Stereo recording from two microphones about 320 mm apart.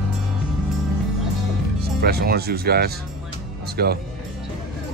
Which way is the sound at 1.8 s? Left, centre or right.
Right.